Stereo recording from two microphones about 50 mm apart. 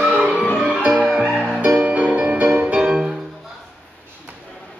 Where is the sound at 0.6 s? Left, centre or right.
Centre.